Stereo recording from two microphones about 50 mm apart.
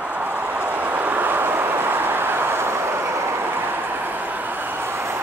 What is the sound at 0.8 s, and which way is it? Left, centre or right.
Vehicle, right.